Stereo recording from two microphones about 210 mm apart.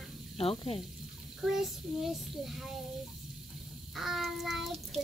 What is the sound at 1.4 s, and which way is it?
A child's voice, centre (ahead or behind).